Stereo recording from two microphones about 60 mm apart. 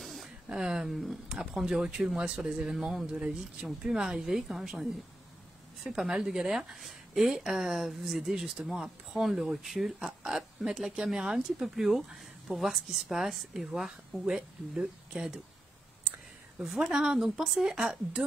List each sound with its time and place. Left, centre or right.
0.0 s a sound: centre
0.5 s speech: centre
5.9 s a woman's voice: centre
16.5 s speech: centre